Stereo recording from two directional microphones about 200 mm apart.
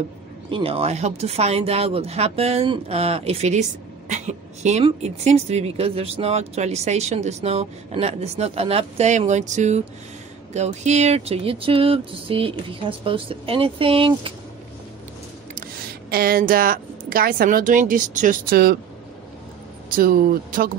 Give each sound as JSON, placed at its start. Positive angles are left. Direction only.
{"t": 0.5, "sound": "a woman's voice", "side_deg": -25}
{"t": 15.5, "sound": "speech", "side_deg": -45}
{"t": 20.0, "sound": "speech", "side_deg": -45}